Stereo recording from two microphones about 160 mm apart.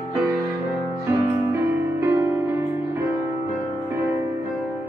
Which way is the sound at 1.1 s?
20° right (ahead or behind).